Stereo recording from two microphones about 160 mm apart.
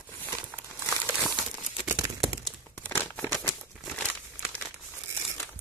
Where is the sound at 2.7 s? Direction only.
15° left (ahead or behind).